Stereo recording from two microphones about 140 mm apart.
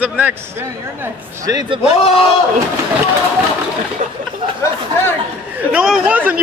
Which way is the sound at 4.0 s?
65° right (ahead or behind).